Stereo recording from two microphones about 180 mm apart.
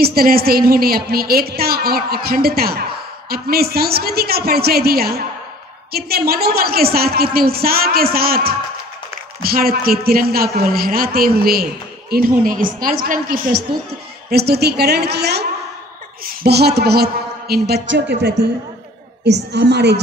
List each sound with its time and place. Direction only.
0.0 s a woman's voice: 55° right (ahead or behind)
16.4 s a woman's voice: 65° right (ahead or behind)
19.5 s a woman's voice: 70° right (ahead or behind)